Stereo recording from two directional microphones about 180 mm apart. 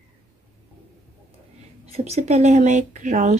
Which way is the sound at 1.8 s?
35° right (ahead or behind).